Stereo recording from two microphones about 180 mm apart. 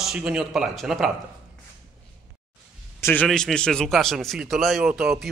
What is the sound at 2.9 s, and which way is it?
Speech, 15° left (ahead or behind).